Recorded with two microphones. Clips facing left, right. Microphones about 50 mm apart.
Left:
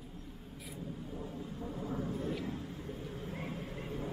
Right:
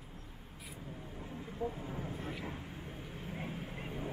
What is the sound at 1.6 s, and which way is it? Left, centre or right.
Speech, right.